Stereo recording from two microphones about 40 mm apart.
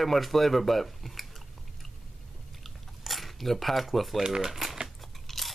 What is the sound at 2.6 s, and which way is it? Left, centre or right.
Cutlery, centre.